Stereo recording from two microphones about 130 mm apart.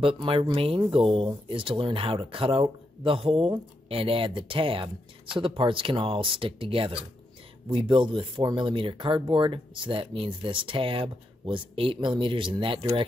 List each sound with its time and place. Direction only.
0.0 s speech: 45° right (ahead or behind)